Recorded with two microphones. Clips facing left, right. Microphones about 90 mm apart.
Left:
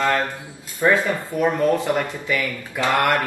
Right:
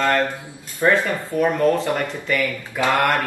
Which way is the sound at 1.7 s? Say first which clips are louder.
Left 1 dB; 10° left (ahead or behind).